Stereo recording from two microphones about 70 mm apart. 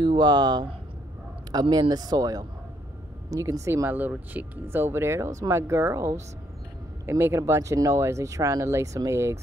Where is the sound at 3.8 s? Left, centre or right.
Right.